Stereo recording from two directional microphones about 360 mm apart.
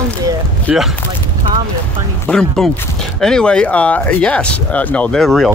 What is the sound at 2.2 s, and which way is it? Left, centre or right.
Speech, centre.